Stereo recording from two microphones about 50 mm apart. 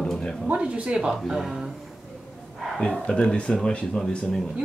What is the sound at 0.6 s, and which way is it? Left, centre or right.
Speech, right.